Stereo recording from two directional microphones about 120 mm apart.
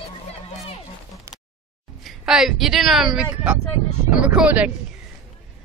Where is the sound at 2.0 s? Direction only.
Centre (ahead or behind).